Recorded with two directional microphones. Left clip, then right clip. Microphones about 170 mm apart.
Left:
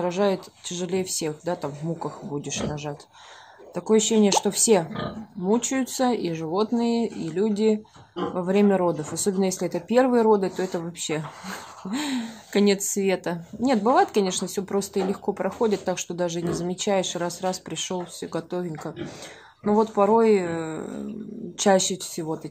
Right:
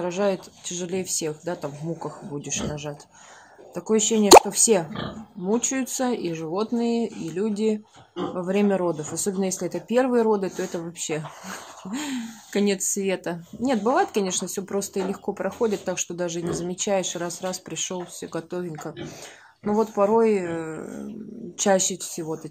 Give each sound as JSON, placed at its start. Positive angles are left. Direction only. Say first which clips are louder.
{"t": 0.0, "sound": "speech", "louder": "left 1 dB", "side_deg": 15}